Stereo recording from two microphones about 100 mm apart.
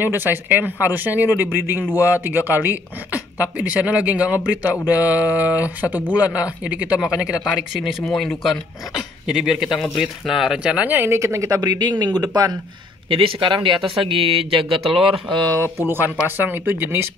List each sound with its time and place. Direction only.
0.0 s speech: 20° right (ahead or behind); by 12.5 s 40° right (ahead or behind)
13.1 s speech: 60° right (ahead or behind)
15.8 s speech: 20° right (ahead or behind)